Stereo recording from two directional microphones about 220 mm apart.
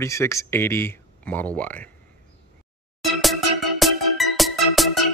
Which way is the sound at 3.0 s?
Centre (ahead or behind).